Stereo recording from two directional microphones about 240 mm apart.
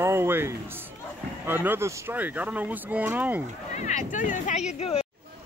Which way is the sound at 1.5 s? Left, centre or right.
Centre.